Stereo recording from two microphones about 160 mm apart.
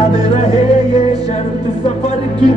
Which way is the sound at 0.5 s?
25° right (ahead or behind).